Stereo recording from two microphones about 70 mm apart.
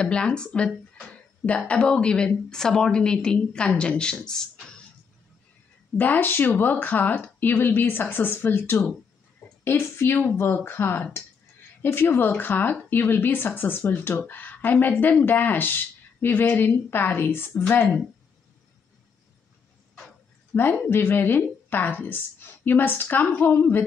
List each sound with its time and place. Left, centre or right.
0.0 s a woman's voice: centre
1.7 s a woman's voice: centre
5.9 s speech: left
20.8 s speech: left